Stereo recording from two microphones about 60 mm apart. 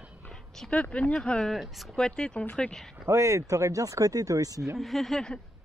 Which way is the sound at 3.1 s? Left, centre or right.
Right.